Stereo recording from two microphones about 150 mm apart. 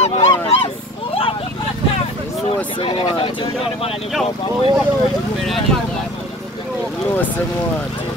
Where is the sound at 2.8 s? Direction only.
35° left (ahead or behind).